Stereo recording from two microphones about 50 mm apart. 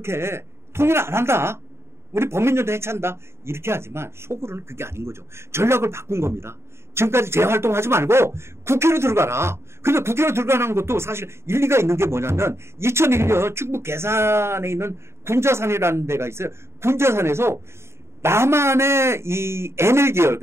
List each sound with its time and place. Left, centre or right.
0.0 s a man's voice: right